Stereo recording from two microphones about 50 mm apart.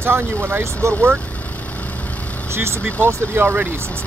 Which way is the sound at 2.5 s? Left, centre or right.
Right.